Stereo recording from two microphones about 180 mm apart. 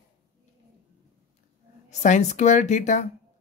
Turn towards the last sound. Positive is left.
turn(degrees=45)  # may be behind; listen again after turning